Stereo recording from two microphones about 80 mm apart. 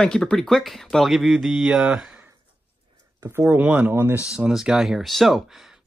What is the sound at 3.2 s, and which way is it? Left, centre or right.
Speech, right.